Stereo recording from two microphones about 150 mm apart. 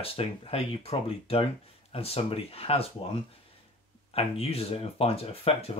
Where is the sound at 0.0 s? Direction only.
40° left (ahead or behind).